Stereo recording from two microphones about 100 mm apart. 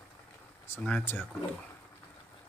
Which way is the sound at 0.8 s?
15° left (ahead or behind).